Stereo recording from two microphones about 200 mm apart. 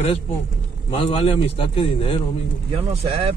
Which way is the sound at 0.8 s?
25° left (ahead or behind).